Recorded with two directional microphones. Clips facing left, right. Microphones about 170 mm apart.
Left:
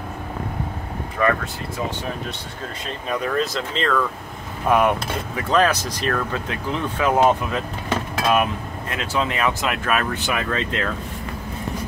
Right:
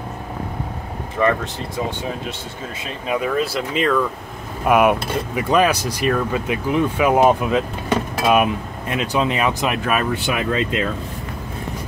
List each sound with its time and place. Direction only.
1.2 s speech: 20° right (ahead or behind)
3.1 s speech: 10° right (ahead or behind)